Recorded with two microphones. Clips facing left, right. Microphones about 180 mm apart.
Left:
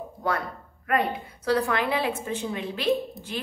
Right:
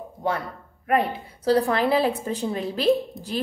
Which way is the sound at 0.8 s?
30° right (ahead or behind).